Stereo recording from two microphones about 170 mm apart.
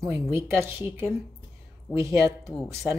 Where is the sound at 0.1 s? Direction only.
15° right (ahead or behind).